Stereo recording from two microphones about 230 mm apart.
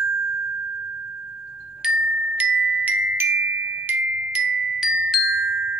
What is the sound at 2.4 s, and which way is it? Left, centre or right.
Glockenspiel, centre.